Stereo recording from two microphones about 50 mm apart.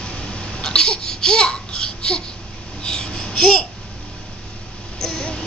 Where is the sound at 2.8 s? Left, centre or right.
Centre.